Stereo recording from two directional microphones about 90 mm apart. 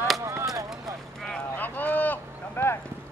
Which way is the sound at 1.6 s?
20° left (ahead or behind).